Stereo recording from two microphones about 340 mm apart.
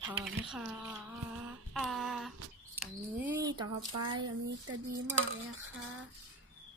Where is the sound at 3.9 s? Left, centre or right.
Right.